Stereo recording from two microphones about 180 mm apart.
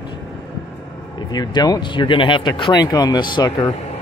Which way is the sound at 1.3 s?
20° left (ahead or behind).